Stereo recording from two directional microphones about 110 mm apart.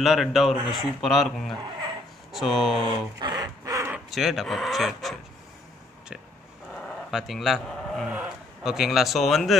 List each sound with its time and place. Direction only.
0.0 s speech: centre (ahead or behind)
3.2 s a sound: 35° right (ahead or behind)
4.1 s speech: centre (ahead or behind)
7.1 s speech: centre (ahead or behind)
8.1 s a man's voice: 5° right (ahead or behind)